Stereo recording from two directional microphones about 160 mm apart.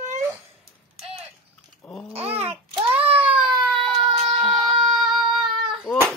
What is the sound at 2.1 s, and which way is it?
Babbling, 40° right (ahead or behind).